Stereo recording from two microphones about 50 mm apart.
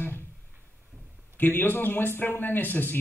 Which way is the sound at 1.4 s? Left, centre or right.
Left.